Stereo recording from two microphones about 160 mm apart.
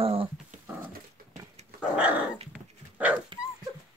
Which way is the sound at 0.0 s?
35° right (ahead or behind).